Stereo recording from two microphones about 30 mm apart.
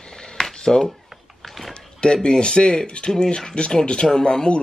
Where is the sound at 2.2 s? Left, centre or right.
Left.